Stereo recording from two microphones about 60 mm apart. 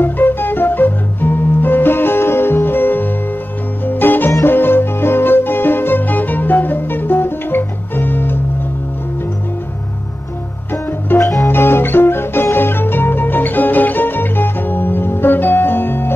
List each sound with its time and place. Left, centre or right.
0.0 s music: left
10.7 s music: left